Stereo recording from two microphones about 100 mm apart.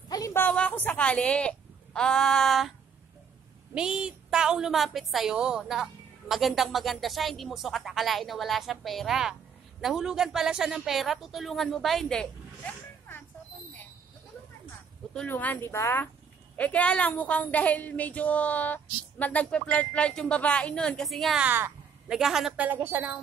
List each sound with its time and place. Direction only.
0.3 s a woman's voice: 20° left (ahead or behind); by 2.7 s centre (ahead or behind)
3.7 s a woman's voice: 10° right (ahead or behind)
15.2 s speech: 20° left (ahead or behind)
16.5 s a woman's voice: 15° left (ahead or behind)
21.4 s speech: 20° right (ahead or behind)
22.0 s a woman's voice: 5° right (ahead or behind)
22.8 s a woman's voice: 15° right (ahead or behind)